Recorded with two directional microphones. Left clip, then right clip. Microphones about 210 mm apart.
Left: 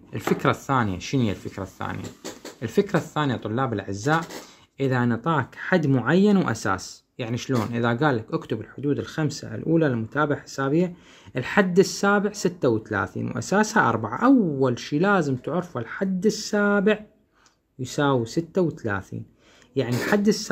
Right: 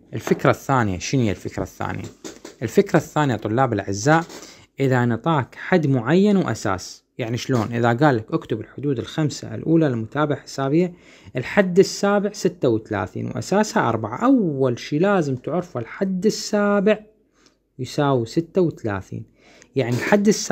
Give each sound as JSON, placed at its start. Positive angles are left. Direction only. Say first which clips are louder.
{"t": 0.3, "sound": "speech", "louder": "right 4 dB", "side_deg": -30}